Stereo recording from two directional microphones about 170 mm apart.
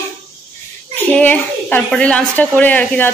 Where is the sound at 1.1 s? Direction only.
10° left (ahead or behind).